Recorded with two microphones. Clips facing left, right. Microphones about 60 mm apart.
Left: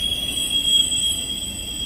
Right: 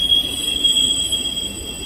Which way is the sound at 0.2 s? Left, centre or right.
Right.